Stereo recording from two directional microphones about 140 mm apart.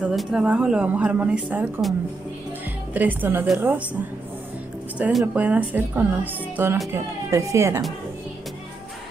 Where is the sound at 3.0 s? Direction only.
10° right (ahead or behind).